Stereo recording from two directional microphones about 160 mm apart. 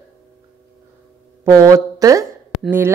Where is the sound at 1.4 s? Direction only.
20° right (ahead or behind).